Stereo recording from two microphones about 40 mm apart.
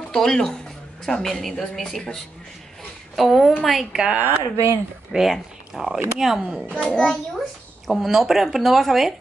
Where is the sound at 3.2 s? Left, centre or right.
Centre.